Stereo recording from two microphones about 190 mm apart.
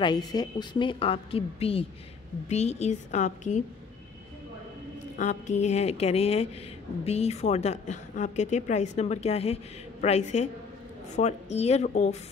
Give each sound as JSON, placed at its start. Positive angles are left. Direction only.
{"t": 0.0, "sound": "a woman's voice", "side_deg": 20}
{"t": 5.1, "sound": "a woman's voice", "side_deg": 40}